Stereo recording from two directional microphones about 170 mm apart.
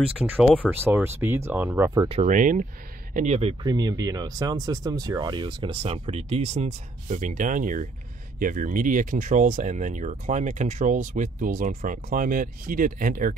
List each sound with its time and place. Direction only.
0.2 s speech: centre (ahead or behind)
0.7 s speech: 10° right (ahead or behind)
2.0 s speech: 45° right (ahead or behind)
3.2 s speech: 40° right (ahead or behind)
3.6 s speech: 25° right (ahead or behind); by 13.3 s 55° right (ahead or behind)